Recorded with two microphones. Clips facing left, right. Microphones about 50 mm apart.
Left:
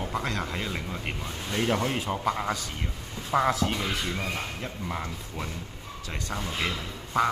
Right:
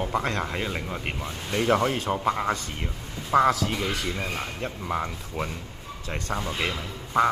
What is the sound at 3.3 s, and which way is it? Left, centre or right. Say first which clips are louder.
Speech: right 5 dB; right.